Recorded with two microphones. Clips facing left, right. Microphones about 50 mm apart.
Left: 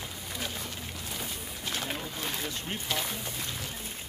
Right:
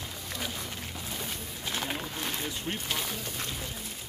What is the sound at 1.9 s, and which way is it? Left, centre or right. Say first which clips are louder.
Boat: right 1 dB; centre.